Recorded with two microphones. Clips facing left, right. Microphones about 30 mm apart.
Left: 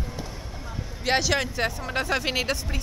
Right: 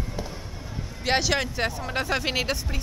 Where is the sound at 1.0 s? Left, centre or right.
Centre.